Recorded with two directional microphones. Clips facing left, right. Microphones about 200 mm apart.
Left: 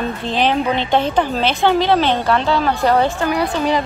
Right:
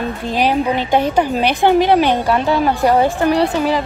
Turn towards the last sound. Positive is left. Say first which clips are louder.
# right 4 dB
turn(degrees=-30)  # may be behind; listen again after turning